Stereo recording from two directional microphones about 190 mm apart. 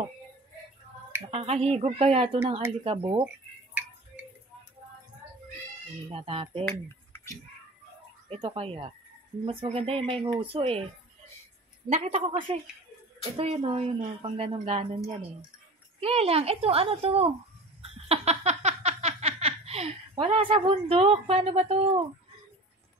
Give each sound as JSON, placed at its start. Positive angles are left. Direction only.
{"t": 1.2, "sound": "a woman's voice", "side_deg": -30}
{"t": 6.1, "sound": "speech", "side_deg": -30}
{"t": 8.3, "sound": "a woman's voice", "side_deg": -30}
{"t": 11.9, "sound": "a woman's voice", "side_deg": -35}
{"t": 16.0, "sound": "a woman's voice", "side_deg": -30}
{"t": 18.0, "sound": "a sound", "side_deg": -35}
{"t": 20.3, "sound": "speech", "side_deg": -25}